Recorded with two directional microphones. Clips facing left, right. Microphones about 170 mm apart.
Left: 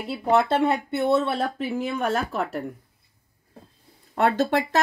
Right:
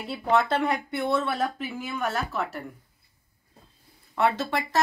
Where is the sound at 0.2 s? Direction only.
25° left (ahead or behind); by 2.6 s 40° left (ahead or behind).